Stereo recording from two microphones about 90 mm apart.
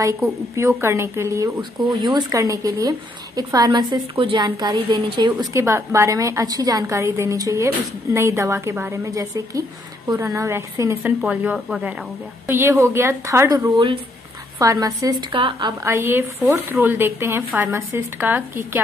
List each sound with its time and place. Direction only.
0.2 s speech: 30° right (ahead or behind)
1.6 s a woman's voice: 55° right (ahead or behind)
2.1 s a woman's voice: 40° right (ahead or behind)
3.9 s a woman's voice: 70° right (ahead or behind)
4.5 s a woman's voice: 50° right (ahead or behind)
4.8 s a woman's voice: 60° right (ahead or behind)
5.5 s a woman's voice: 35° right (ahead or behind)
12.4 s a woman's voice: 30° right (ahead or behind); by 15.2 s 45° right (ahead or behind)
15.3 s a woman's voice: 70° right (ahead or behind)
15.8 s speech: 30° right (ahead or behind)